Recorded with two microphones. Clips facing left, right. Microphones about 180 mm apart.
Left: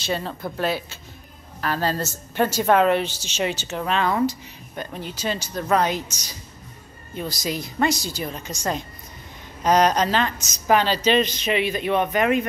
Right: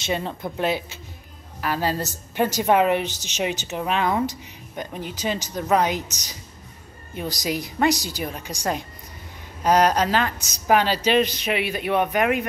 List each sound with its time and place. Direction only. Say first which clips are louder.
0.0 s a woman's voice: even; 20° right (ahead or behind)